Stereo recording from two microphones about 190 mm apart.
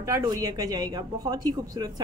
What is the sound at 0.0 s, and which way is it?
A woman's voice, 20° right (ahead or behind).